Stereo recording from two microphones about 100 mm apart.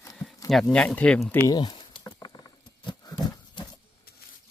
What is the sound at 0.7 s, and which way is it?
Speech, 15° left (ahead or behind).